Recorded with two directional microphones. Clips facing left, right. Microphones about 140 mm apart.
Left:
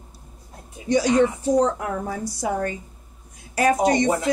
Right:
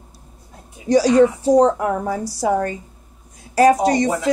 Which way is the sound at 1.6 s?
55° right (ahead or behind).